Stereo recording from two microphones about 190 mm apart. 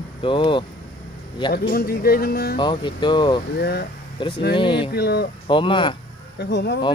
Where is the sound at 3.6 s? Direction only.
60° left (ahead or behind).